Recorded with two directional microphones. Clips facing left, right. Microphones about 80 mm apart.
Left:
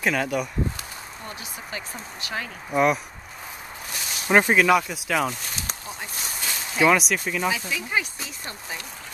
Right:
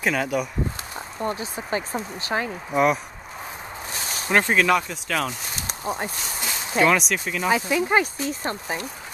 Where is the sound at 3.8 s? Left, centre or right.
Right.